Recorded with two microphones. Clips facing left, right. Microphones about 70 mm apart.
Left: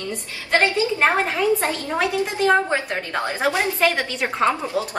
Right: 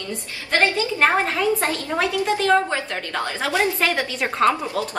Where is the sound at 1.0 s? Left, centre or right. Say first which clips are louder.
Right 3 dB; centre.